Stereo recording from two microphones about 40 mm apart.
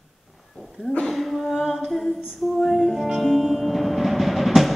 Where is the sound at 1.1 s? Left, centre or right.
Centre.